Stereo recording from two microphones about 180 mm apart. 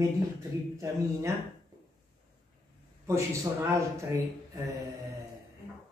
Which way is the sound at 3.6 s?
15° right (ahead or behind).